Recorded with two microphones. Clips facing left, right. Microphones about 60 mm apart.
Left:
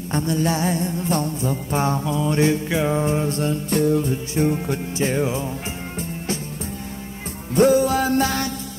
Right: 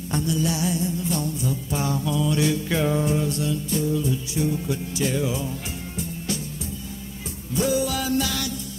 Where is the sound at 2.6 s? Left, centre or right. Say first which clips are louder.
Left 2 dB; left.